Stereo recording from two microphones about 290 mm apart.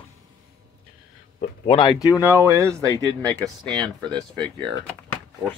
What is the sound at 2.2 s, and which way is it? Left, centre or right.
Speech, centre.